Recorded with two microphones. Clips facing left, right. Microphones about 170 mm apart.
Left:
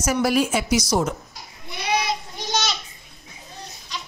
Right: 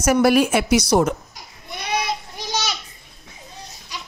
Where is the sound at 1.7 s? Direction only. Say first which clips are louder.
Left 1 dB; 50° right (ahead or behind).